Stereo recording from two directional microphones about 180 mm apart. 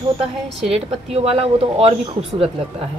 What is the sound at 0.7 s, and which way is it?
Speech, 35° right (ahead or behind).